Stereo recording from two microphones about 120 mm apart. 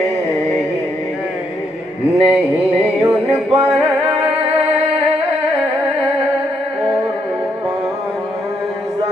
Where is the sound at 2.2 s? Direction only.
60° right (ahead or behind).